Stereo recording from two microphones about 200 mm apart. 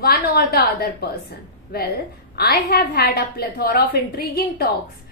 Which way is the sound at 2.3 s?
50° left (ahead or behind).